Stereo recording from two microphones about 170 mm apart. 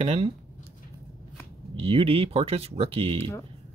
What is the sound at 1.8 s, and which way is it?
Speech, 35° right (ahead or behind).